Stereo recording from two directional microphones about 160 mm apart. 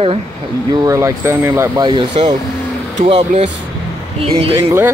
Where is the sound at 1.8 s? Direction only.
30° right (ahead or behind).